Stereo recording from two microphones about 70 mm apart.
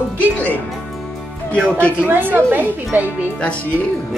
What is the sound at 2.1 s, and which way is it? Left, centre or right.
Speech, right.